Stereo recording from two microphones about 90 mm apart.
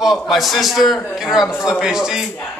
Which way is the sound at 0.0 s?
Centre (ahead or behind).